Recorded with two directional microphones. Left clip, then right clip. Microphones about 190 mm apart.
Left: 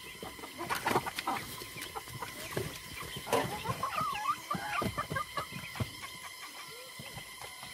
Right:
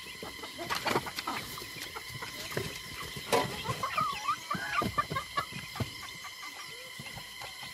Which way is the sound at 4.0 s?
35° left (ahead or behind).